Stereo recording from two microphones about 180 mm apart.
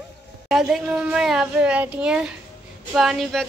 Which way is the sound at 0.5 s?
Centre (ahead or behind).